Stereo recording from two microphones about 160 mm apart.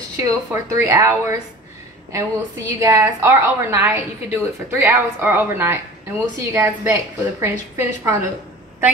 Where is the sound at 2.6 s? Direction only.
20° right (ahead or behind).